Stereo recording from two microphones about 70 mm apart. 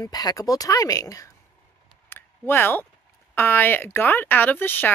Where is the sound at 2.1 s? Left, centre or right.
Left.